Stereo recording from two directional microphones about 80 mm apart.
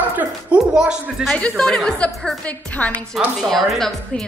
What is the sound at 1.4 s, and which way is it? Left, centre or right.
A woman's voice, centre.